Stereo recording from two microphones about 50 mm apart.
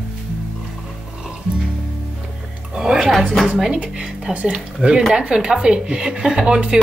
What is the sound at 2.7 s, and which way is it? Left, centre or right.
Music, centre.